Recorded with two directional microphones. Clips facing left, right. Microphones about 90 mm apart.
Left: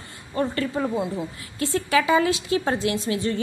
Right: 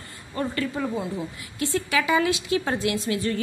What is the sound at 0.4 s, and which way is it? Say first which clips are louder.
Speech: left 3 dB; 30° left (ahead or behind).